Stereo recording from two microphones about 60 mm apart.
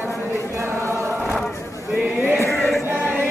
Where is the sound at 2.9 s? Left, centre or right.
Right.